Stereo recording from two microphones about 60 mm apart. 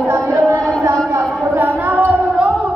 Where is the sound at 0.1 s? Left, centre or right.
Right.